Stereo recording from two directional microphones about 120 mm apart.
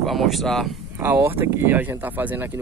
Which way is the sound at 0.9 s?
20° right (ahead or behind).